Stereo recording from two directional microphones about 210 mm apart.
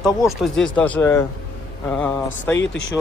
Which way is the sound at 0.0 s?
Centre (ahead or behind).